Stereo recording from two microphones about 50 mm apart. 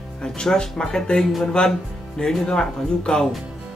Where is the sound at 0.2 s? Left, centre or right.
Centre.